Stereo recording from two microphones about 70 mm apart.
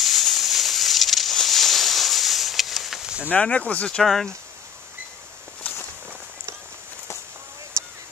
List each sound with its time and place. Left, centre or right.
0.0 s a sound: centre
3.3 s speech: centre
4.0 s speech: centre